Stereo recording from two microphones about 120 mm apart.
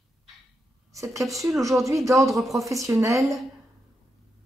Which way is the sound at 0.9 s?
25° right (ahead or behind).